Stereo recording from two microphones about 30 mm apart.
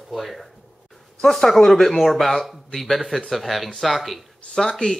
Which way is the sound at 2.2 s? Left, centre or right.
Centre.